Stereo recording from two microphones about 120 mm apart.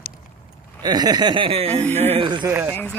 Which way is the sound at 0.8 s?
35° right (ahead or behind).